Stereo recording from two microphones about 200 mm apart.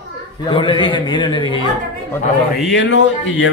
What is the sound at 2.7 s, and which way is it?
Speech, 60° left (ahead or behind).